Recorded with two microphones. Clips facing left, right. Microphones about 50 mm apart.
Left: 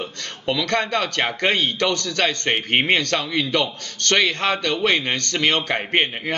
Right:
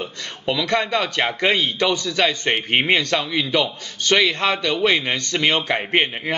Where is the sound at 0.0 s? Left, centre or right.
Centre.